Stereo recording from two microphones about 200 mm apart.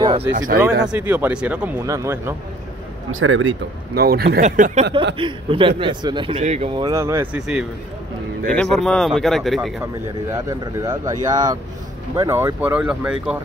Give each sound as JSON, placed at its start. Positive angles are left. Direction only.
{"t": 0.3, "sound": "speech", "side_deg": -45}
{"t": 0.8, "sound": "speech", "side_deg": -10}
{"t": 3.1, "sound": "speech", "side_deg": -85}
{"t": 3.9, "sound": "speech", "side_deg": -50}
{"t": 5.1, "sound": "speech", "side_deg": -25}
{"t": 6.8, "sound": "speech", "side_deg": -15}
{"t": 10.3, "sound": "speech", "side_deg": -15}